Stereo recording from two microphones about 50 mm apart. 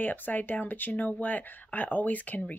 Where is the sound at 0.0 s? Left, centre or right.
Left.